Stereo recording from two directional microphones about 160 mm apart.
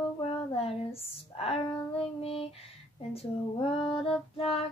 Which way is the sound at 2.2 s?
35° left (ahead or behind).